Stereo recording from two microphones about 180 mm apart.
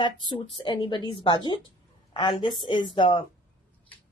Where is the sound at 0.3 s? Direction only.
25° left (ahead or behind).